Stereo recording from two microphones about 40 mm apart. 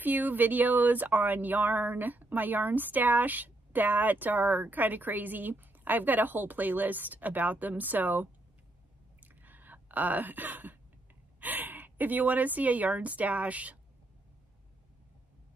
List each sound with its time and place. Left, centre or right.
0.0 s speech: right
9.2 s a sound: right
11.3 s a woman's voice: right